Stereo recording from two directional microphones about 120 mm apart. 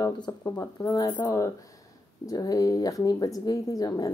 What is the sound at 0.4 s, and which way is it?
Speech, 30° left (ahead or behind).